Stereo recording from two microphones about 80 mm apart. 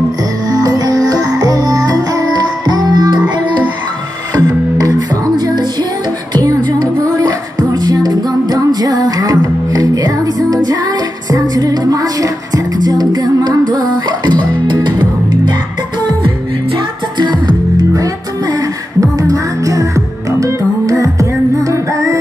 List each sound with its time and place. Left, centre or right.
0.5 s music: right
4.4 s music: right
16.7 s music: right
17.9 s music: right